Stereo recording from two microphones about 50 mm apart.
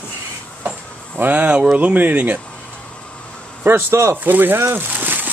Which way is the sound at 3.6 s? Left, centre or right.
Right.